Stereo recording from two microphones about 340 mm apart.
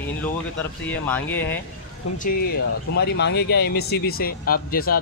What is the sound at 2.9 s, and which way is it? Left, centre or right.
Speech, left.